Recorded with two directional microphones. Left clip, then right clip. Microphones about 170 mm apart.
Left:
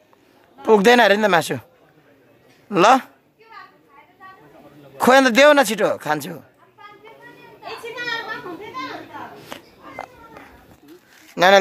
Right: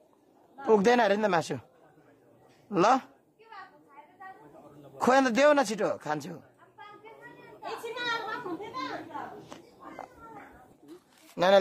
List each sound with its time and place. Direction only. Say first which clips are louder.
0.6 s speech: left 10 dB; 20° left (ahead or behind)
2.7 s speech: left 10 dB; 20° left (ahead or behind)
4.9 s speech: left 11 dB; 20° left (ahead or behind)
9.5 s a sound: left 11 dB; 20° left (ahead or behind)
11.4 s speech: left 11 dB; 15° left (ahead or behind)